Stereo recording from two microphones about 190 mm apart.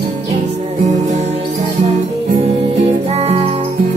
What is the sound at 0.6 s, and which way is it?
Music, 35° right (ahead or behind).